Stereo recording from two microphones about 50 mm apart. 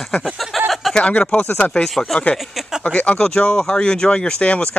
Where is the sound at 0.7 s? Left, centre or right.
Centre.